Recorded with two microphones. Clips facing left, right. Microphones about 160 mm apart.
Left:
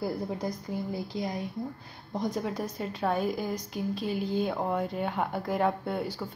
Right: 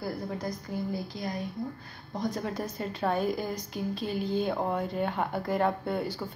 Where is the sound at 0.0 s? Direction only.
25° left (ahead or behind).